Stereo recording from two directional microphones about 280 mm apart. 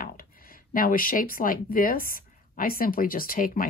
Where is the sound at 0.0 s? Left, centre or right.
Left.